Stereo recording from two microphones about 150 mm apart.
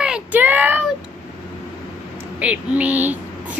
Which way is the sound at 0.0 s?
10° right (ahead or behind).